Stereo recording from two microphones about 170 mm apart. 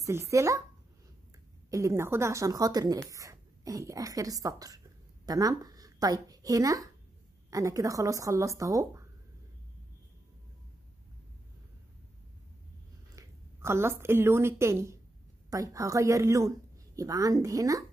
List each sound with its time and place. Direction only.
0.0 s speech: 15° right (ahead or behind)
1.7 s a woman's voice: 20° right (ahead or behind)
13.1 s speech: 15° right (ahead or behind)